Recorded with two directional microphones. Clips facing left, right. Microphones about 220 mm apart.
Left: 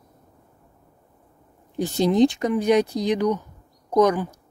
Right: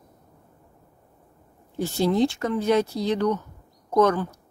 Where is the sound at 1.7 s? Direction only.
15° left (ahead or behind).